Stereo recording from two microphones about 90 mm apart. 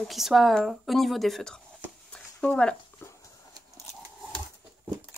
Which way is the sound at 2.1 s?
10° left (ahead or behind).